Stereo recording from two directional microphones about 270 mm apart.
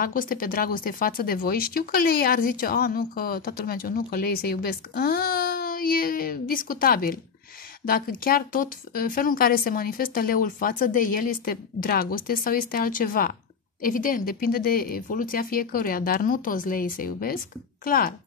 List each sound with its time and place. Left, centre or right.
0.0 s speech: left